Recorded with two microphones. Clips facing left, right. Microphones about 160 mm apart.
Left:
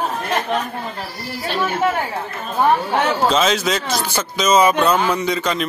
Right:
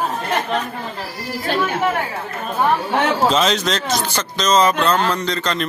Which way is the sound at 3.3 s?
Centre (ahead or behind).